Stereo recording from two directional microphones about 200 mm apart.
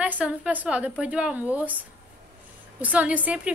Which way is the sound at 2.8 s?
5° right (ahead or behind).